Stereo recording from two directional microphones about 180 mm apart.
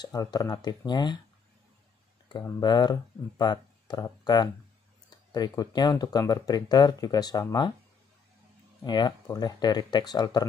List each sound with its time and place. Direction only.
0.0 s speech: 20° left (ahead or behind)
2.2 s speech: 25° left (ahead or behind)
8.8 s speech: 25° left (ahead or behind)